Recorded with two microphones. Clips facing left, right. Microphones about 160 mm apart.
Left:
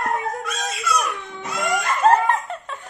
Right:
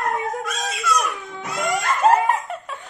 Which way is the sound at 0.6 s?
Centre (ahead or behind).